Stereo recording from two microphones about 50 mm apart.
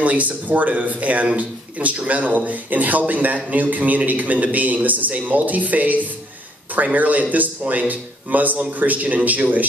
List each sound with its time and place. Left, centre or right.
0.0 s a man's voice: right